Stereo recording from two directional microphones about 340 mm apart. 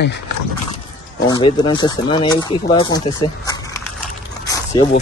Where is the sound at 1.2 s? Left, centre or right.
Centre.